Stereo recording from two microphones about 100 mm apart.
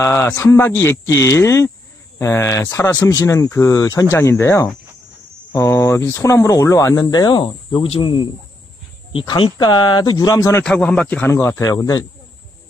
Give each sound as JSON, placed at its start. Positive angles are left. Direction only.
{"t": 0.0, "sound": "a man's voice", "side_deg": 30}
{"t": 3.1, "sound": "speech", "side_deg": 35}
{"t": 7.8, "sound": "speech", "side_deg": 65}
{"t": 9.4, "sound": "speech", "side_deg": 50}
{"t": 10.6, "sound": "speech", "side_deg": 10}
{"t": 11.3, "sound": "a man's voice", "side_deg": 25}
{"t": 11.6, "sound": "speech", "side_deg": 40}